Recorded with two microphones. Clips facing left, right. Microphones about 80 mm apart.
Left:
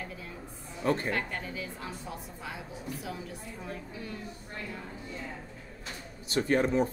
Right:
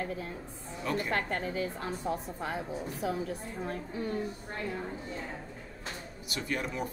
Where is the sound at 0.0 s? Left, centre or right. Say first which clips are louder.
Right 6 dB; right.